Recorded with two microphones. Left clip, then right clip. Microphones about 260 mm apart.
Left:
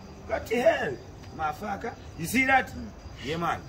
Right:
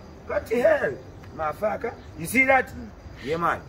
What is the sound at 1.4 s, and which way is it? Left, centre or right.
A man's voice, centre.